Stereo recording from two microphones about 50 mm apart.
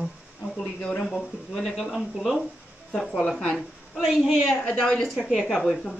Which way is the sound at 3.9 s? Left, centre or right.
Centre.